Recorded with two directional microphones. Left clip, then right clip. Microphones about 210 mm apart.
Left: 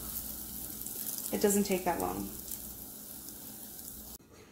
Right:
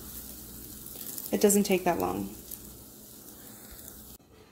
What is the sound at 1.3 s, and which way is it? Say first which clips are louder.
Speech: right 5 dB; 40° right (ahead or behind).